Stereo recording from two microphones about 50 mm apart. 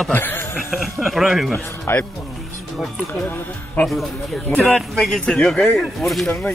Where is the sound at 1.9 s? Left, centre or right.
Left.